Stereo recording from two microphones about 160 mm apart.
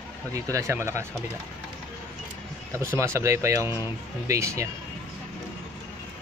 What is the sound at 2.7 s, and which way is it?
Speech, 15° right (ahead or behind).